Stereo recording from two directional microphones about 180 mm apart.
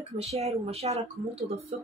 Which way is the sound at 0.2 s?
35° right (ahead or behind).